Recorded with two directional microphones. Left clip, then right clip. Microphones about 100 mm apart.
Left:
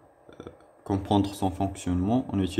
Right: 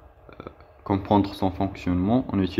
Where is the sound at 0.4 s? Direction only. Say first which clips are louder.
Right 4 dB; 5° right (ahead or behind).